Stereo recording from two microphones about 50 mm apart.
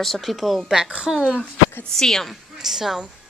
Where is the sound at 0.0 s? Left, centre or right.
Centre.